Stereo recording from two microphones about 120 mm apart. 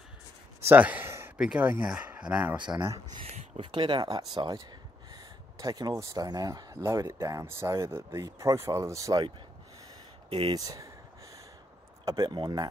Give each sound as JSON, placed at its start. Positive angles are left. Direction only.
{"t": 0.6, "sound": "a sound", "side_deg": -15}
{"t": 1.4, "sound": "speech", "side_deg": -10}
{"t": 3.3, "sound": "speech", "side_deg": -60}
{"t": 10.5, "sound": "speech", "side_deg": -30}
{"t": 12.0, "sound": "speech", "side_deg": -30}